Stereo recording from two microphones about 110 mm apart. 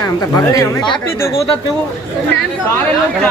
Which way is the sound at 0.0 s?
35° left (ahead or behind).